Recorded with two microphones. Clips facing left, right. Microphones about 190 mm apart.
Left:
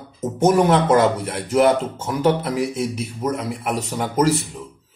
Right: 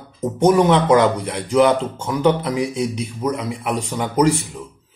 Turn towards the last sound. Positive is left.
turn(degrees=0)  # may be behind; listen again after turning